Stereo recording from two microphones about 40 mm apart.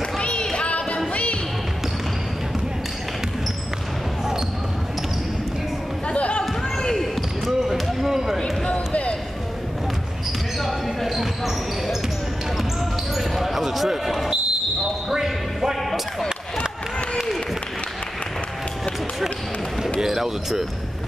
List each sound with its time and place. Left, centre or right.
0.2 s music: left
6.0 s chatter: left
7.0 s basketball bounce: centre
8.7 s a sound: left
10.6 s basketball bounce: centre
13.1 s basketball bounce: centre
15.0 s whip: centre
20.0 s basketball bounce: centre